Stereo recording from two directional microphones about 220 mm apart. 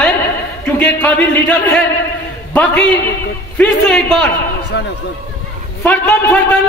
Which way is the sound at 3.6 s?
5° left (ahead or behind).